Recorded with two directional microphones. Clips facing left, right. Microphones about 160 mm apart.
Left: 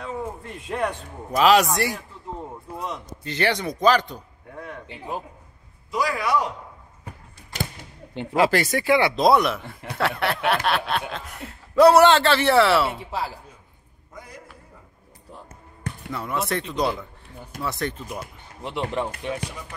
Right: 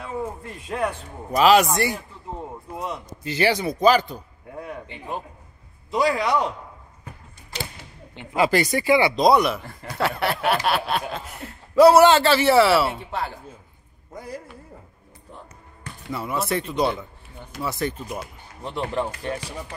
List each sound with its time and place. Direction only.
0.0 s a man's voice: 5° right (ahead or behind)
4.8 s speech: 5° left (ahead or behind)
5.9 s a man's voice: 25° right (ahead or behind)
8.4 s speech: centre (ahead or behind)
14.1 s a man's voice: 30° right (ahead or behind)
16.1 s speech: 5° right (ahead or behind)